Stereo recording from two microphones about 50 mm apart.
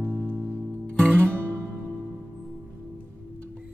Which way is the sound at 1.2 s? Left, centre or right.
Right.